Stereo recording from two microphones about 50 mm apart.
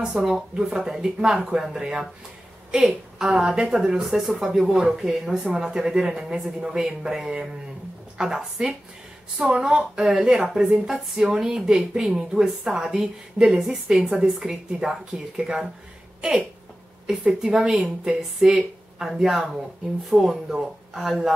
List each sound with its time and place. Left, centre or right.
0.2 s speech: centre
10.7 s speech: centre
12.4 s speech: centre
17.0 s speech: centre